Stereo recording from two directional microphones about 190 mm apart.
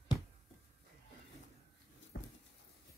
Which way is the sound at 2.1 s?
60° left (ahead or behind).